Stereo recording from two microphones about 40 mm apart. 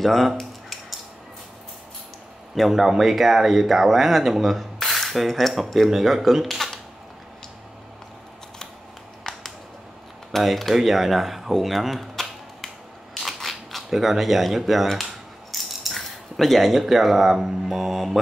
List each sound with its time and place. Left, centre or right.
0.0 s speech: centre
0.4 s a sound: centre
2.7 s speech: centre
6.4 s camera: centre
9.3 s a sound: centre
10.4 s speech: centre
12.2 s cap gun: centre
13.8 s speech: centre